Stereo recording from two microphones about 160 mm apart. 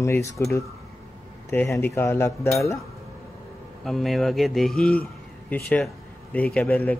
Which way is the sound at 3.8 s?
Centre (ahead or behind).